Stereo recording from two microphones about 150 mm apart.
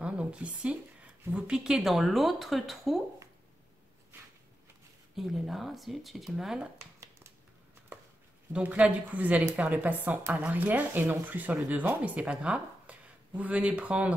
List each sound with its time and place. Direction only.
0.0 s a woman's voice: 10° right (ahead or behind)
5.1 s speech: centre (ahead or behind)
8.5 s speech: 10° right (ahead or behind)